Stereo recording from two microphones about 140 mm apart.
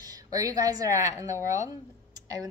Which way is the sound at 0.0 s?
25° right (ahead or behind).